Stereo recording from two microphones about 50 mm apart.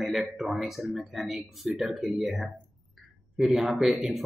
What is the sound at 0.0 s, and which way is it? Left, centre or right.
Speech, centre.